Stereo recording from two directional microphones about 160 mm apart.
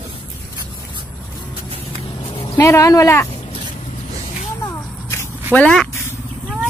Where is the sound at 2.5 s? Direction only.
15° left (ahead or behind).